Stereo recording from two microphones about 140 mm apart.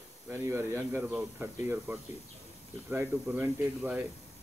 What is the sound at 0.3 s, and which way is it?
Speech, 20° right (ahead or behind).